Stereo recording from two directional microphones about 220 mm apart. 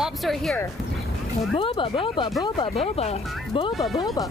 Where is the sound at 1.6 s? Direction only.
25° left (ahead or behind).